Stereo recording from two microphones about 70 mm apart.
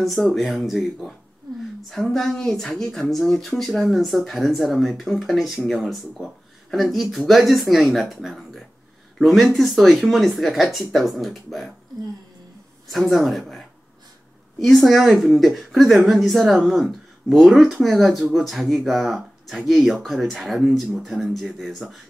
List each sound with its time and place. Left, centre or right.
0.0 s speech: centre
13.1 s speech: centre